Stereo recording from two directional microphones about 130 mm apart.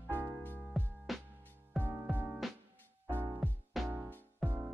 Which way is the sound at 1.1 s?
Centre (ahead or behind).